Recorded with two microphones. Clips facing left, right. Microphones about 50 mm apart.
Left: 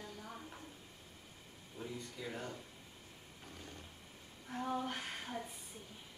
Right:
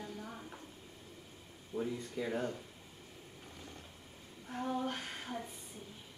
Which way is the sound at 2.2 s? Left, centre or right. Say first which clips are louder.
Right 8 dB; right.